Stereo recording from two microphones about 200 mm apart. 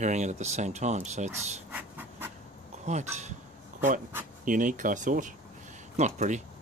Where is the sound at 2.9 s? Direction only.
35° right (ahead or behind).